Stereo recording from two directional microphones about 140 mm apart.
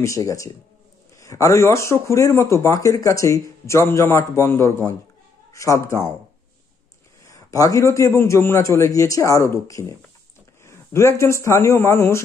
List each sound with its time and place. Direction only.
0.0 s a man's voice: 20° left (ahead or behind)
7.2 s speech: 25° left (ahead or behind)
10.6 s a sound: 20° left (ahead or behind)
11.4 s speech: 20° left (ahead or behind)